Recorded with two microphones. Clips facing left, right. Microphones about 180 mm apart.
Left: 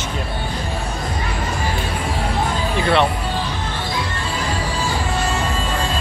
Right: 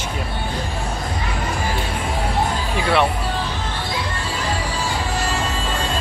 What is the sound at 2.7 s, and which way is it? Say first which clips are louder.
Speech: left 1 dB; 10° right (ahead or behind).